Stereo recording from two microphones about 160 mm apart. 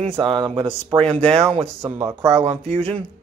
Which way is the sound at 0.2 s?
30° right (ahead or behind).